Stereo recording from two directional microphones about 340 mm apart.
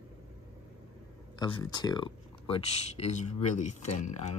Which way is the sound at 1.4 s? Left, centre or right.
Centre.